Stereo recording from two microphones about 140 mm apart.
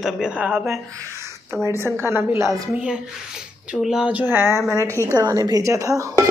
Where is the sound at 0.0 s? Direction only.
5° right (ahead or behind).